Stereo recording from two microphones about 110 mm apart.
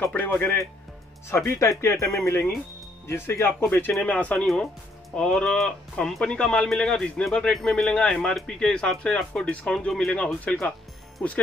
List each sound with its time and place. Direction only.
0.0 s speech: 20° left (ahead or behind)